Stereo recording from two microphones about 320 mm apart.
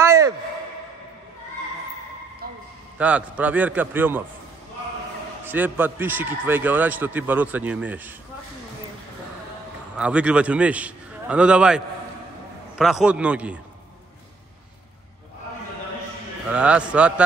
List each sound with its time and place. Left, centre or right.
0.0 s a sound: centre
2.4 s a sound: right
3.0 s a man's voice: centre
5.4 s a man's voice: centre
9.9 s a man's voice: centre
16.4 s a man's voice: centre